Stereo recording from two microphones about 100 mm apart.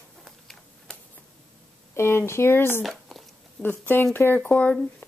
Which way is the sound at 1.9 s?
25° left (ahead or behind).